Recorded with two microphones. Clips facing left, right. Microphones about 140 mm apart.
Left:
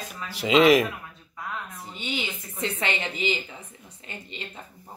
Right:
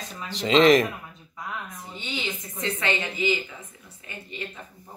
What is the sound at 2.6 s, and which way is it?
Speech, 15° left (ahead or behind).